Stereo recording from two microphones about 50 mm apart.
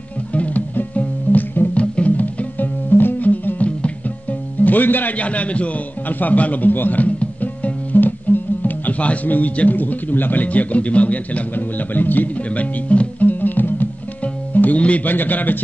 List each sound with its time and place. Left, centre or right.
0.3 s music: left
5.1 s a man's voice: left
12.4 s speech: left
13.3 s music: left
14.8 s a man's voice: left
15.0 s a man's voice: left